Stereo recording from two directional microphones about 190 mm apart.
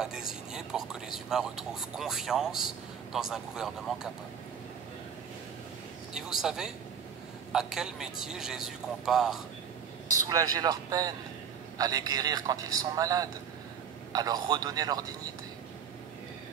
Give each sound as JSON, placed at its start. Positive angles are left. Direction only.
{"t": 0.0, "sound": "speech", "side_deg": -5}
{"t": 6.1, "sound": "speech", "side_deg": 0}
{"t": 10.2, "sound": "a man's voice", "side_deg": -20}